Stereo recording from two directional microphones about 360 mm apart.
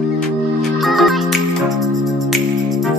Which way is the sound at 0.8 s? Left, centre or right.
Centre.